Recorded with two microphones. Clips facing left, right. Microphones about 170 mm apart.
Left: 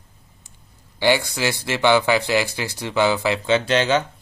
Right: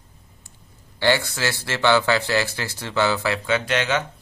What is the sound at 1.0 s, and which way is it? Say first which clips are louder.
Speech: left 2 dB; 15° left (ahead or behind).